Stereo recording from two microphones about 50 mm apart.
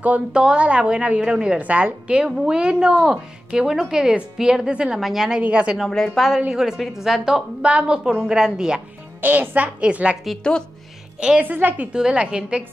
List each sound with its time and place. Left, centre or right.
0.0 s a woman's voice: right
5.0 s speech: centre
5.4 s a woman's voice: right
6.0 s a woman's voice: centre
6.5 s speech: centre
7.6 s speech: right
9.2 s speech: right
9.8 s a woman's voice: right
11.3 s speech: right
11.9 s a woman's voice: centre